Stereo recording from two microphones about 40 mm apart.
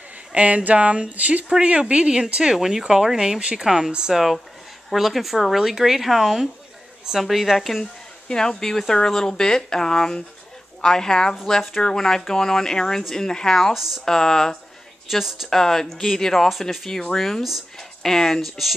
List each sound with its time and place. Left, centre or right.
0.3 s speech: right
1.5 s speech: right
2.5 s a woman's voice: centre
4.1 s a woman's voice: centre
8.3 s speech: centre
13.7 s speech: centre
14.0 s speech: centre
15.0 s speech: centre
15.5 s speech: centre